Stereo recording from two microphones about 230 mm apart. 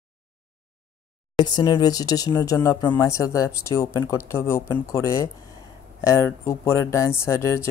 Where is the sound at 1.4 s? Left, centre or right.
Centre.